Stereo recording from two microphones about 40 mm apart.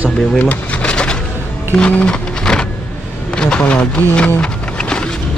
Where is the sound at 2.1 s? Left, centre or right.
Centre.